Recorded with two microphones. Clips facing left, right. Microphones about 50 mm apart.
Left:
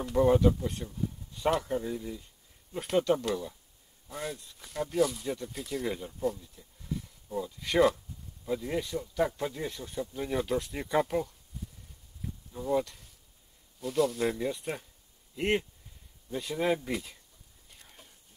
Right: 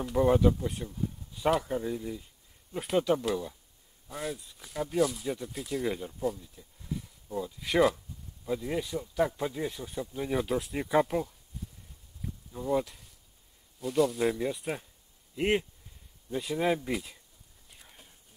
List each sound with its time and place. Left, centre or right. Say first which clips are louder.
0.0 s speech: even; centre
12.5 s speech: even; centre
17.6 s whispering: even; centre